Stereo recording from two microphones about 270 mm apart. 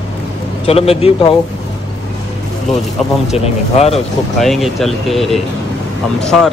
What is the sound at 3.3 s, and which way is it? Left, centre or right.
Speech, left.